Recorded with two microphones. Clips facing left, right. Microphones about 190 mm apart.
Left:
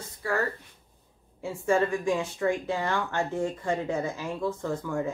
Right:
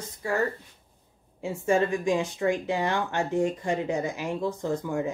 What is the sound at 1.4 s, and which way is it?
Speech, 20° right (ahead or behind).